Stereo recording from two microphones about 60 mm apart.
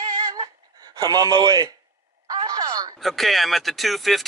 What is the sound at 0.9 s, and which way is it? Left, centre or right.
Speech, right.